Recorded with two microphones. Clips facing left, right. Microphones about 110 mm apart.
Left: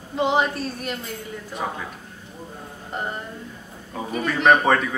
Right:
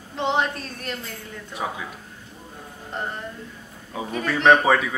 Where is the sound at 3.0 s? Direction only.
5° left (ahead or behind).